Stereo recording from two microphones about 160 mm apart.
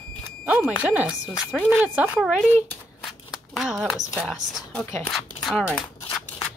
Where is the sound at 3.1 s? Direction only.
Centre (ahead or behind).